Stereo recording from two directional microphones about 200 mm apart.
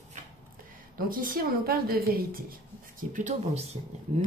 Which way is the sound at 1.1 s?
45° right (ahead or behind).